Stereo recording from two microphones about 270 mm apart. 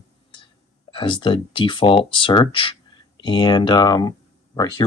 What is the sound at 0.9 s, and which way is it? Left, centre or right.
Speech, centre.